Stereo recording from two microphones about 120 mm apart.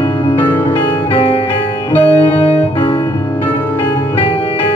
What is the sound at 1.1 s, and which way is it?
Music, 50° left (ahead or behind).